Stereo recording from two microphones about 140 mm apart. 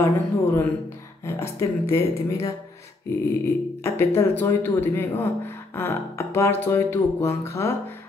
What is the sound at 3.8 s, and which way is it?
Speech, 15° left (ahead or behind).